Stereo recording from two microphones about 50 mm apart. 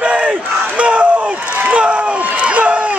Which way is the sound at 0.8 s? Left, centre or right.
Right.